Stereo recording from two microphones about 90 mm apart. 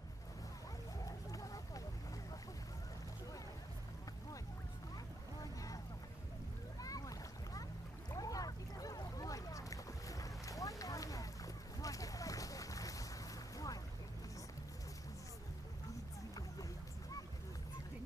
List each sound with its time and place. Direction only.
1.0 s a sound: 40° left (ahead or behind)
5.4 s boat: 40° left (ahead or behind)
6.8 s boat: 40° left (ahead or behind)